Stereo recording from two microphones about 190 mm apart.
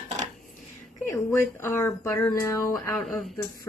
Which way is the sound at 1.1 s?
15° left (ahead or behind).